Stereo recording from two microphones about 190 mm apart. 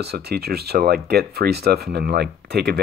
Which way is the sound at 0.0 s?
55° right (ahead or behind).